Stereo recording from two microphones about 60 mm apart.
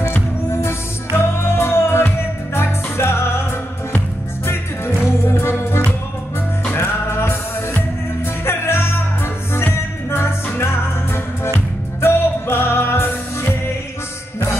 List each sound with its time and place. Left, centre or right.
0.5 s music: left
4.5 s music: left
12.0 s music: left